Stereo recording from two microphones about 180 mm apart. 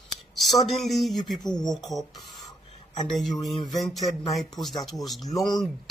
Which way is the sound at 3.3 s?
20° left (ahead or behind).